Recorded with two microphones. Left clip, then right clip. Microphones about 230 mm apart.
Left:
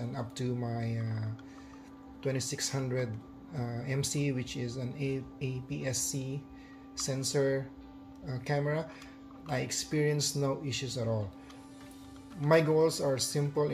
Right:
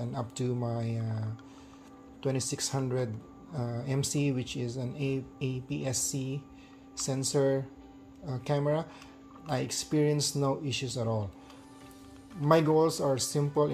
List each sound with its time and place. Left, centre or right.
0.0 s speech: right
2.2 s speech: right
12.4 s speech: right